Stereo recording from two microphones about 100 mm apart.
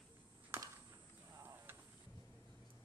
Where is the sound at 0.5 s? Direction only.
25° right (ahead or behind).